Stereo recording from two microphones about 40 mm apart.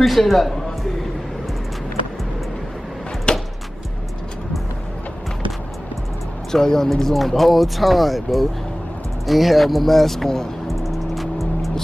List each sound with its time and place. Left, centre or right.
0.0 s speech: centre
3.3 s a sound: left
6.5 s speech: centre
10.7 s music: centre